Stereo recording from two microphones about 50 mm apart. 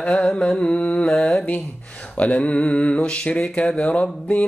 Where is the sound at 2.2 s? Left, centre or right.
Left.